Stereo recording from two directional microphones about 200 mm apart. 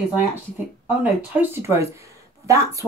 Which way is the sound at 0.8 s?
10° right (ahead or behind).